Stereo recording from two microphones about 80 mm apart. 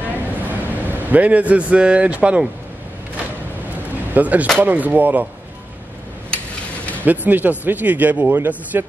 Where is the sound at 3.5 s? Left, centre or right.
Right.